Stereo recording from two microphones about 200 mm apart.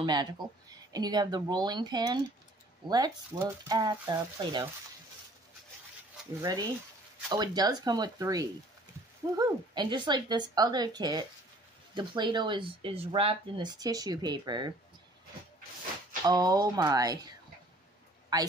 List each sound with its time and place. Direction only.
0.0 s speech: 20° right (ahead or behind)
7.2 s speech: 20° right (ahead or behind)
16.3 s a man's voice: 20° right (ahead or behind)